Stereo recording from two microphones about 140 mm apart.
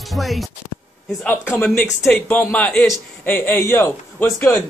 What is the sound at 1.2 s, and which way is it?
A man's voice, 10° left (ahead or behind).